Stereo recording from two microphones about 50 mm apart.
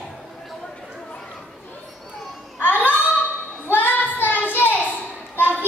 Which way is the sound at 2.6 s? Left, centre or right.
Left.